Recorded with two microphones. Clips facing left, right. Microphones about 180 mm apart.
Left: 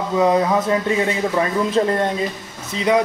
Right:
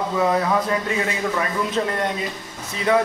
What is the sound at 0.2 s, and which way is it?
Speech, 20° left (ahead or behind).